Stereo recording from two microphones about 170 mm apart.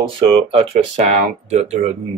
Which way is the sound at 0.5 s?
40° right (ahead or behind).